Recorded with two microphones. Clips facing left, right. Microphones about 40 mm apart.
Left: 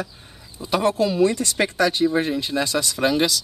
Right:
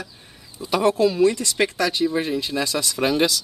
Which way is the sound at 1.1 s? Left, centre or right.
Centre.